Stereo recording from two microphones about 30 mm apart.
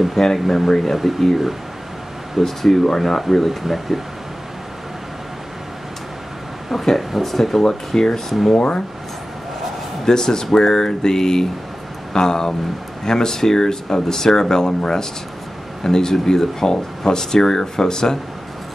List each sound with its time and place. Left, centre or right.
0.1 s speech: centre
2.4 s speech: centre
3.3 s speech: centre
7.0 s speech: centre
7.6 s speech: centre
8.3 s speech: centre
8.5 s speech: left
10.0 s speech: centre